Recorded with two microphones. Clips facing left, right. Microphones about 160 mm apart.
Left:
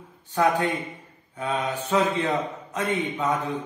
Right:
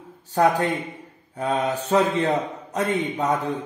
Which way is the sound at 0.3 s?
40° right (ahead or behind).